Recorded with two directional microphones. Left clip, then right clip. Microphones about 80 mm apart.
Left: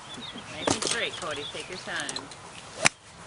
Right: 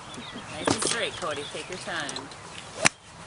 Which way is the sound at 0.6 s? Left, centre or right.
Left.